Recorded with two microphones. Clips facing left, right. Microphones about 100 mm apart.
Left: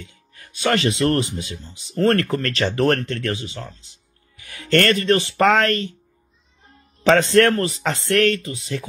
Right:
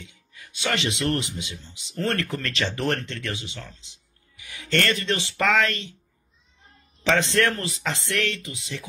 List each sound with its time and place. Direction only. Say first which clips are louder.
0.0 s speech: left 3 dB; 50° left (ahead or behind)
4.4 s speech: left 7 dB; 55° left (ahead or behind)
7.0 s speech: left 7 dB; 50° left (ahead or behind)
8.4 s speech: left 7 dB; 40° left (ahead or behind)